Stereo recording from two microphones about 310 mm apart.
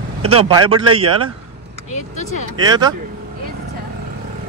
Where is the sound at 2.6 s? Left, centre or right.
Centre.